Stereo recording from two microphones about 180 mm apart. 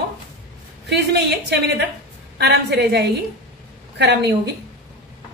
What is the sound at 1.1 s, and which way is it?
A woman's voice, 65° right (ahead or behind).